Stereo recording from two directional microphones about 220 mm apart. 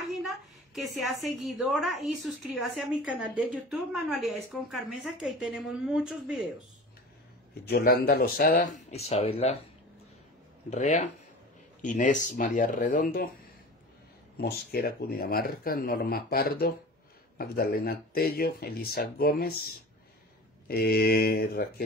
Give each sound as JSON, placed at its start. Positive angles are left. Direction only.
{"t": 0.1, "sound": "a sound", "side_deg": 0}
{"t": 0.9, "sound": "a woman's voice", "side_deg": 0}
{"t": 7.6, "sound": "speech", "side_deg": 45}
{"t": 10.7, "sound": "speech", "side_deg": 30}
{"t": 14.3, "sound": "speech", "side_deg": 45}